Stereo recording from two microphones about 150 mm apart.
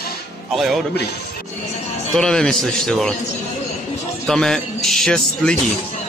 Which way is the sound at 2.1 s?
5° left (ahead or behind).